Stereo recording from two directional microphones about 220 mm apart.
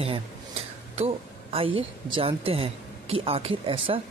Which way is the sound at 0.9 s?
25° right (ahead or behind).